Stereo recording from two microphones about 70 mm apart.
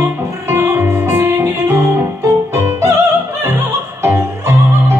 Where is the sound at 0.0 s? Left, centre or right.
Right.